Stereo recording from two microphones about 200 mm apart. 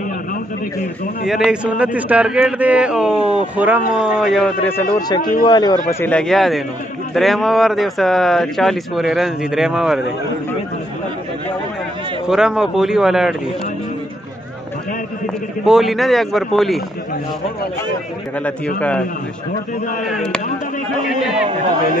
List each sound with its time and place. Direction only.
1.2 s speech: centre (ahead or behind); by 5.8 s 20° left (ahead or behind)
5.9 s speech: 10° left (ahead or behind)
12.3 s speech: 5° right (ahead or behind)
15.6 s speech: centre (ahead or behind)
18.8 s a man's voice: 5° left (ahead or behind)
20.1 s speech: centre (ahead or behind)